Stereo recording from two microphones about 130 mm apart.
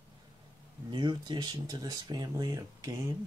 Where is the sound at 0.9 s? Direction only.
35° right (ahead or behind).